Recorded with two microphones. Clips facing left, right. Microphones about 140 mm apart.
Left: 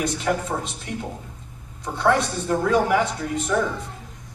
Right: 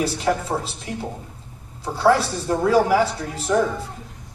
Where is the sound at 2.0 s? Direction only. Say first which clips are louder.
Right 3 dB; 35° right (ahead or behind).